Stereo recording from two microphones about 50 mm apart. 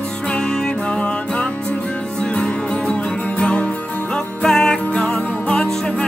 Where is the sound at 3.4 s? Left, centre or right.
Left.